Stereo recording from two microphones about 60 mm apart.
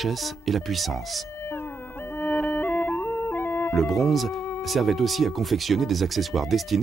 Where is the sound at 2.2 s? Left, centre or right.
Left.